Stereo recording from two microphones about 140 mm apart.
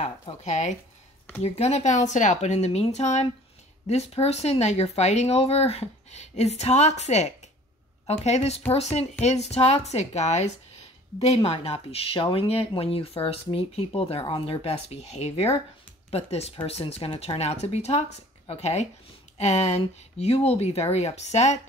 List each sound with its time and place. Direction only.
0.0 s speech: 55° left (ahead or behind)